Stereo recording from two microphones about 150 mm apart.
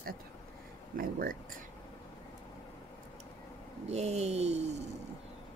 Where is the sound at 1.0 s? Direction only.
70° right (ahead or behind).